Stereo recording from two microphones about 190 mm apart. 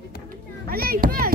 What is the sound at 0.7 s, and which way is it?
Children playing, 50° right (ahead or behind).